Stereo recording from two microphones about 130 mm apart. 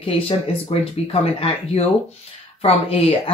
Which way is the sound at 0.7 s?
50° left (ahead or behind).